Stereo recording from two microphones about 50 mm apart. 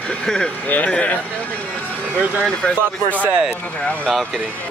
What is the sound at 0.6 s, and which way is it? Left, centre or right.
Speech, left.